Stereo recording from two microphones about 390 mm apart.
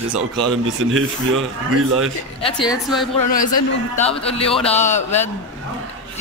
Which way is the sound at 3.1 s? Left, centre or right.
Left.